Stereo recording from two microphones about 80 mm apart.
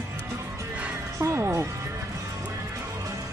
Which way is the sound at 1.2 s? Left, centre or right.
Right.